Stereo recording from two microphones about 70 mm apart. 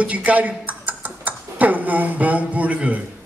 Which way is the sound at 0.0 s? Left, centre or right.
Right.